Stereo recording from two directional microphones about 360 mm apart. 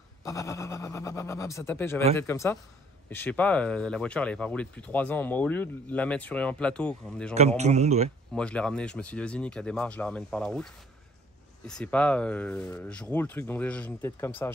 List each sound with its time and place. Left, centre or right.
0.2 s speech: centre
7.3 s a man's voice: centre
8.4 s speech: centre